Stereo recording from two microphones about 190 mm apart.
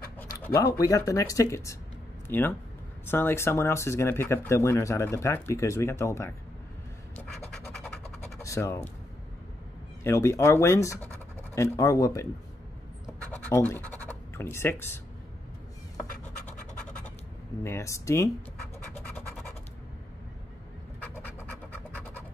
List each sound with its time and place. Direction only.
0.2 s a sound: 15° left (ahead or behind)
0.7 s speech: 20° left (ahead or behind)
8.4 s speech: 15° left (ahead or behind)
10.0 s speech: 15° left (ahead or behind)
13.3 s speech: 10° left (ahead or behind)
17.6 s speech: 15° left (ahead or behind)